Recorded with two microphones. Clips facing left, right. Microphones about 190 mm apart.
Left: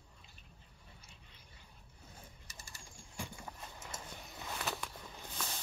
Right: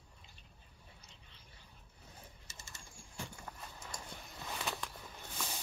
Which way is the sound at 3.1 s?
10° left (ahead or behind).